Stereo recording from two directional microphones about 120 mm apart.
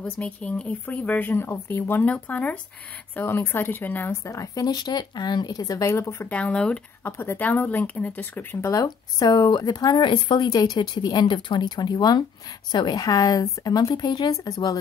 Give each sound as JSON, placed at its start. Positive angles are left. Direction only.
{"t": 0.0, "sound": "a woman's voice", "side_deg": 10}
{"t": 6.3, "sound": "speech", "side_deg": 10}